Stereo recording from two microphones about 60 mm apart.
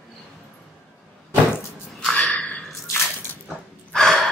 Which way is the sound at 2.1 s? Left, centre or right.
Centre.